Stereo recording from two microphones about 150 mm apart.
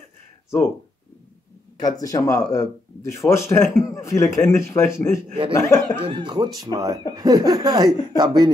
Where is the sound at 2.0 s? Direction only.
25° left (ahead or behind).